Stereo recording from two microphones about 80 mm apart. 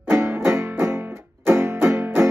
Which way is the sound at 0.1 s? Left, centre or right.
Right.